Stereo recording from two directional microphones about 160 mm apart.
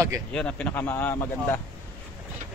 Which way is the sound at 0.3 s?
5° left (ahead or behind).